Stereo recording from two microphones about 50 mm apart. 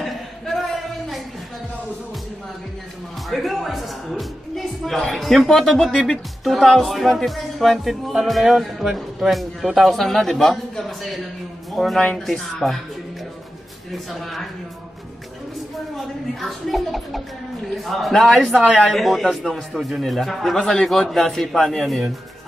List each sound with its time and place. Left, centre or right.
0.0 s a sound: centre
3.3 s speech: centre
16.3 s speech: centre
20.5 s a man's voice: centre